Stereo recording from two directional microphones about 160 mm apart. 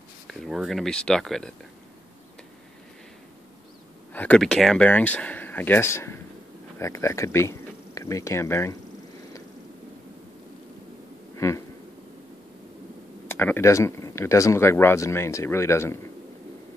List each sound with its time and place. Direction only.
0.3 s speech: centre (ahead or behind)
4.1 s speech: 10° left (ahead or behind)
11.3 s a sound: 20° left (ahead or behind)
13.3 s speech: 15° left (ahead or behind)